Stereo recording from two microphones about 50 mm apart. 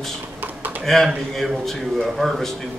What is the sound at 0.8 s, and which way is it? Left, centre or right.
A man's voice, centre.